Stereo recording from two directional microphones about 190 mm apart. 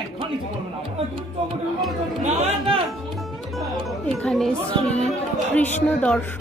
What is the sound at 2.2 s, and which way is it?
Speech, 35° right (ahead or behind).